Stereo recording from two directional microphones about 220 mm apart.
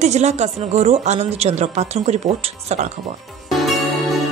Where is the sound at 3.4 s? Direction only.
Centre (ahead or behind).